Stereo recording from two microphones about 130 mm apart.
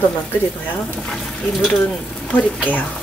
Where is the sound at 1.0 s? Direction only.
5° left (ahead or behind).